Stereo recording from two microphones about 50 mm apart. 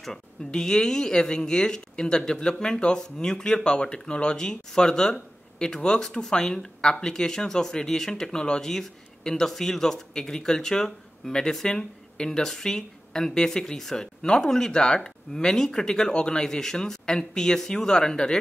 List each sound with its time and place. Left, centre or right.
0.5 s speech: centre